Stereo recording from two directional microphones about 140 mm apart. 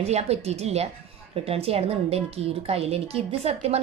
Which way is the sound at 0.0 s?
50° right (ahead or behind).